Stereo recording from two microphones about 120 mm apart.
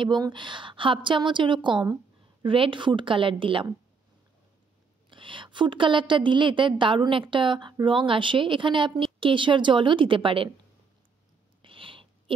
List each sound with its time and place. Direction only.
0.0 s a woman's voice: 40° right (ahead or behind)
5.1 s a woman's voice: 45° right (ahead or behind)
11.6 s a sound: 45° right (ahead or behind)